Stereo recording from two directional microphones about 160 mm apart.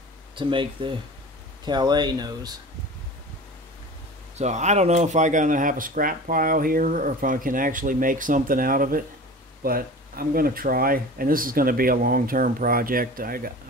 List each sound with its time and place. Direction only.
0.4 s speech: 30° right (ahead or behind)
4.4 s speech: 45° right (ahead or behind); by 13.5 s 65° right (ahead or behind)